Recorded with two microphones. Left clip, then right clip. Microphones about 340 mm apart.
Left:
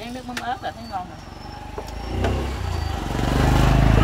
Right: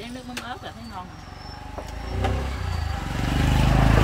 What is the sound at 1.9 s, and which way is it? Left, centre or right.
Vehicle, left.